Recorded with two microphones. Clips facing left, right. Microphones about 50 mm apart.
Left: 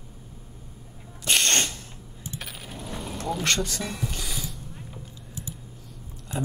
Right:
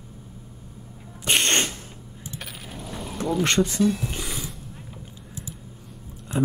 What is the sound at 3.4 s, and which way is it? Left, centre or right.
Speech, right.